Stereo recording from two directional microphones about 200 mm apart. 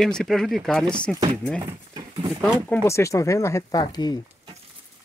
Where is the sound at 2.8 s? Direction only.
15° left (ahead or behind).